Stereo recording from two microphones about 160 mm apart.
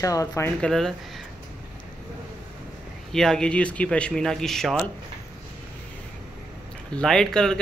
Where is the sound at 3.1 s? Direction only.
5° left (ahead or behind).